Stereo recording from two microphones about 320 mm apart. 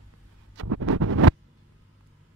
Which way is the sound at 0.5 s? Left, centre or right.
Right.